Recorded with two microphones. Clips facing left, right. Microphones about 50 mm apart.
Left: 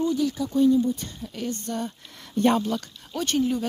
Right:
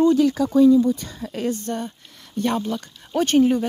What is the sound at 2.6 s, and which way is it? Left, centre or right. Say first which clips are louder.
Speech: right 1 dB; centre.